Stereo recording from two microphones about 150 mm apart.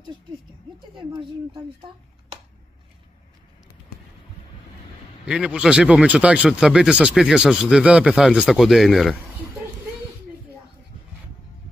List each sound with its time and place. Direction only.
0.9 s speech: 35° right (ahead or behind)
5.2 s speech: 5° right (ahead or behind)